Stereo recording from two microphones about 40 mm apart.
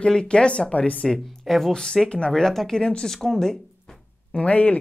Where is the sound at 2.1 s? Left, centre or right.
Left.